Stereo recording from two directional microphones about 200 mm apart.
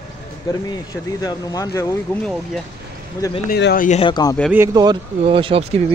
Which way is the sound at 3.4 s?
50° left (ahead or behind).